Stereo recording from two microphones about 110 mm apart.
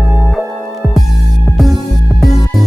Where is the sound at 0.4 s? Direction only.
Centre (ahead or behind).